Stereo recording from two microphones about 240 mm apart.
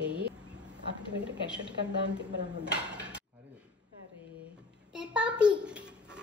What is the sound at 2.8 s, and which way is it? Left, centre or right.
Dishes, centre.